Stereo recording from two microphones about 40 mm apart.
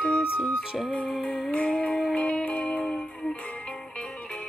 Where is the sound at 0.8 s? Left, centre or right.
Left.